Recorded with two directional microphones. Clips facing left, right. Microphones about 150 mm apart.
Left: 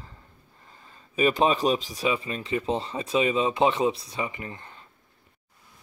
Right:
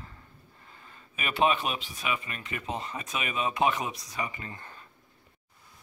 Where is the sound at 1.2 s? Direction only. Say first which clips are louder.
Left 5 dB; 35° left (ahead or behind).